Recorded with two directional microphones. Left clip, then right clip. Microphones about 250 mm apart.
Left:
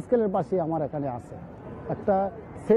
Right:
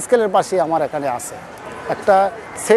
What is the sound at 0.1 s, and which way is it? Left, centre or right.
Speech, centre.